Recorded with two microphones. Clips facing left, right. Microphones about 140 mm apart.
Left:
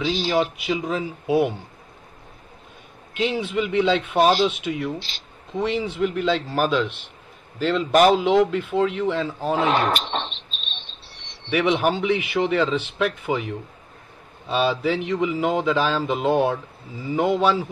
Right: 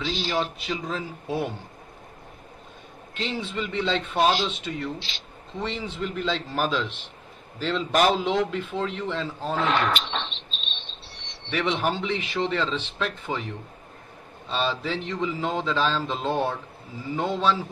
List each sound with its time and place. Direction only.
0.0 s speech: 5° left (ahead or behind)
3.2 s speech: 10° left (ahead or behind)
4.2 s speech: 45° left (ahead or behind)
4.5 s speech: 10° left (ahead or behind)
4.9 s speech: 45° left (ahead or behind)
5.6 s speech: 10° left (ahead or behind)
9.6 s cricket: 45° left (ahead or behind)
11.5 s speech: 10° left (ahead or behind)
14.5 s speech: 10° left (ahead or behind)